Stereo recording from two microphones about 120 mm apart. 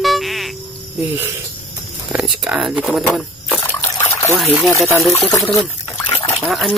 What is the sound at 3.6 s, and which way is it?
Trickle, 20° left (ahead or behind).